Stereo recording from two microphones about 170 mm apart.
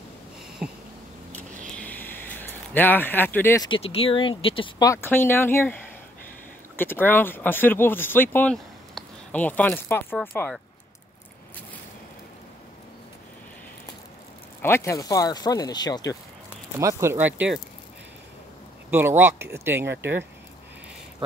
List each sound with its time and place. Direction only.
1.8 s a sound: 10° left (ahead or behind)
3.6 s speech: 35° left (ahead or behind); by 5.8 s 15° left (ahead or behind)
6.8 s speech: 10° left (ahead or behind)
14.6 s speech: 15° left (ahead or behind)
16.7 s speech: 15° right (ahead or behind)
18.9 s speech: 15° right (ahead or behind)